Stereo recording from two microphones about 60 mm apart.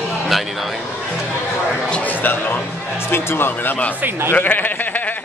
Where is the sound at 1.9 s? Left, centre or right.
Left.